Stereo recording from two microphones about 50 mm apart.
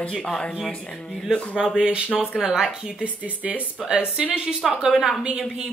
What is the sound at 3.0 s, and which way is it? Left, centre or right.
Speech, right.